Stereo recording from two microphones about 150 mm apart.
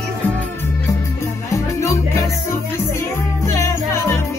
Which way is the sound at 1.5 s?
20° left (ahead or behind).